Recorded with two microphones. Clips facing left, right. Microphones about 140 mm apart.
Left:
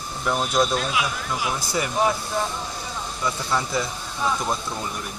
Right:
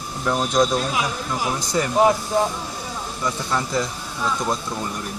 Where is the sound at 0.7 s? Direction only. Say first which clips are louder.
Right 2 dB; 40° right (ahead or behind).